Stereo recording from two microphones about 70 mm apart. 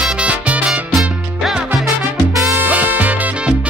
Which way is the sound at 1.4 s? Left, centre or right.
Centre.